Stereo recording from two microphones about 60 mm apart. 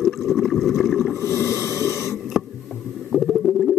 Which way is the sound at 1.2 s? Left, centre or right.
Left.